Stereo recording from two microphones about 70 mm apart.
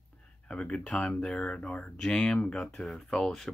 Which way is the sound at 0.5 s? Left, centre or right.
Centre.